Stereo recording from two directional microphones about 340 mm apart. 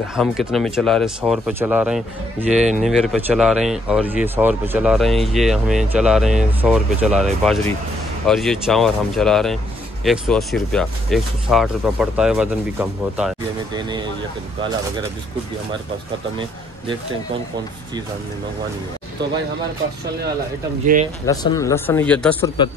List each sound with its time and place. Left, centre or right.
0.1 s speech: centre
20.8 s speech: right
21.3 s speech: centre